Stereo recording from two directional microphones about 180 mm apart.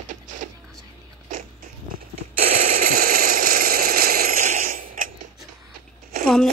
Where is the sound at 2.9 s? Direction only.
55° right (ahead or behind).